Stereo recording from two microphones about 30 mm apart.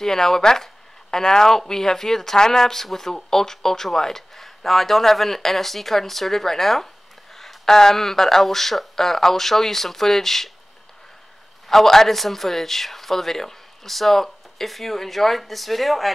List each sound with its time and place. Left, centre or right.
0.0 s speech: centre
11.7 s speech: centre